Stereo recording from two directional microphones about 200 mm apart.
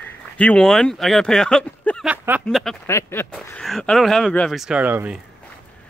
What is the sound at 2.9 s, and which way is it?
Speech, 15° left (ahead or behind).